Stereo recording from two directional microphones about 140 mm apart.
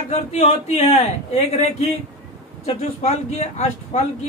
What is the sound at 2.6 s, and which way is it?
Speech, 50° left (ahead or behind).